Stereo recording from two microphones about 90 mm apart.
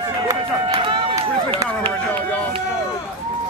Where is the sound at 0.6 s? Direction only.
70° right (ahead or behind).